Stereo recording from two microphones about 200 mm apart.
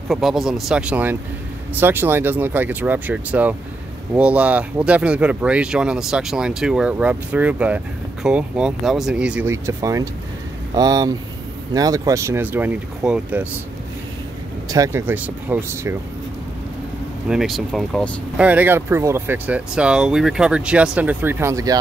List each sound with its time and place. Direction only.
0.1 s speech: centre (ahead or behind)
14.7 s speech: 15° right (ahead or behind)
17.3 s speech: centre (ahead or behind)
18.5 s speech: 10° right (ahead or behind)